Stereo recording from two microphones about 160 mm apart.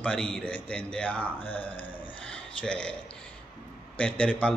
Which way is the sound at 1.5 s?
35° left (ahead or behind).